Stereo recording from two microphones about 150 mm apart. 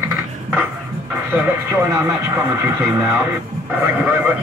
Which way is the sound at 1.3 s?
15° right (ahead or behind).